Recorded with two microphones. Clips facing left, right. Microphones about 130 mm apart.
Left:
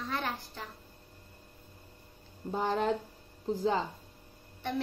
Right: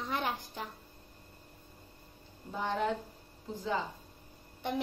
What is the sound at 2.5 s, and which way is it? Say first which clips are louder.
Speech: left 3 dB; 40° left (ahead or behind).